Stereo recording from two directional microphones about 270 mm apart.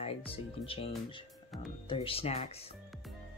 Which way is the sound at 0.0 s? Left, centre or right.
Left.